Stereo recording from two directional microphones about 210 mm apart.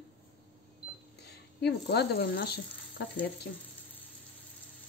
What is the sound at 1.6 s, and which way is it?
Speech, 50° left (ahead or behind).